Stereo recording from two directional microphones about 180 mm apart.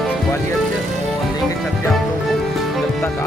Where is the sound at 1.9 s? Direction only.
Centre (ahead or behind).